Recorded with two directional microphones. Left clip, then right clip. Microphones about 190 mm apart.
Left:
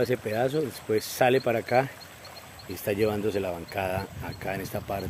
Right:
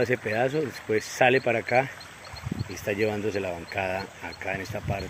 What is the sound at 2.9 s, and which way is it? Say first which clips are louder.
Speech: left 1 dB; 15° left (ahead or behind).